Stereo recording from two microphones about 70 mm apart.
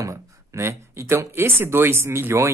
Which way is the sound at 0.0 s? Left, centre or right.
Right.